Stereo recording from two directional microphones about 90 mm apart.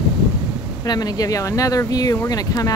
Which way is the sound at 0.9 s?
45° left (ahead or behind).